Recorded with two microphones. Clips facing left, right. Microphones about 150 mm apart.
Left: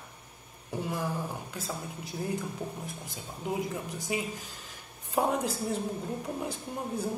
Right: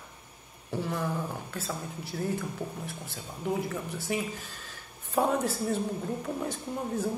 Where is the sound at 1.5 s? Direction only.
15° left (ahead or behind).